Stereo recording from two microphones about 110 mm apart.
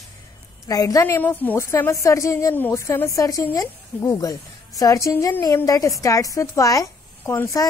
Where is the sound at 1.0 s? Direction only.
20° left (ahead or behind).